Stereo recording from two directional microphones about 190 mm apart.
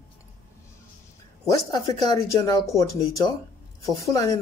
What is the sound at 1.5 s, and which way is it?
Speech, 15° left (ahead or behind).